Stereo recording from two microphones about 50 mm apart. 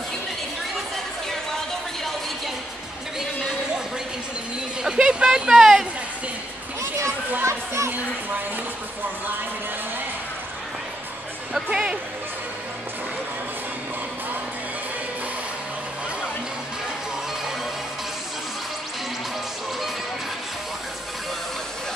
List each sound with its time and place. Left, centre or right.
0.7 s chatter: centre
3.2 s chatter: centre
4.8 s speech: centre
7.4 s children playing: right
11.7 s speech: centre